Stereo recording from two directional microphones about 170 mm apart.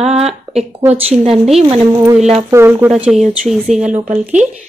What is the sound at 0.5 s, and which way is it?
A woman's voice, 10° right (ahead or behind).